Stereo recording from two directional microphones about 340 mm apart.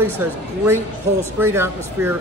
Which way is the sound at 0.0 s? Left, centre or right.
Centre.